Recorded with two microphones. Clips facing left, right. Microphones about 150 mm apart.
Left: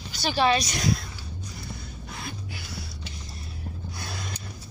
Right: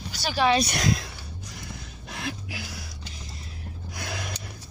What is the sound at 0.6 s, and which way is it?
Speech, 75° right (ahead or behind).